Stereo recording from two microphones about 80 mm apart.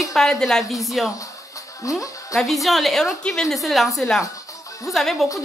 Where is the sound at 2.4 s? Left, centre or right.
Centre.